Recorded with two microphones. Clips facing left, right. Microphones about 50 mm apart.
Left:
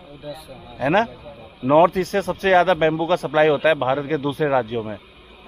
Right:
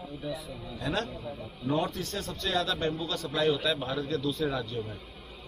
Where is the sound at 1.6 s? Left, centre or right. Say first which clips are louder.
Left 15 dB; left.